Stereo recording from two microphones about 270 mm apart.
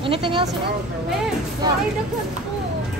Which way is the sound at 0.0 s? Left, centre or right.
Centre.